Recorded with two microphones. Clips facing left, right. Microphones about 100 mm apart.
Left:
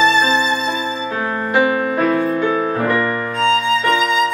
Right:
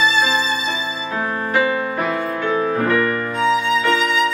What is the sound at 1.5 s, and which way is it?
Music, 20° left (ahead or behind).